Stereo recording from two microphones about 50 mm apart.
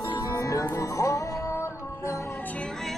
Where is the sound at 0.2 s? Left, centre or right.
Left.